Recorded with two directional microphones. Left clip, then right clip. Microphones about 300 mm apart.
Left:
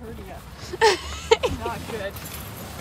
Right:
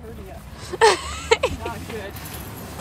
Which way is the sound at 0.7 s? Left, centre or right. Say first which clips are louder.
Right 3 dB; centre.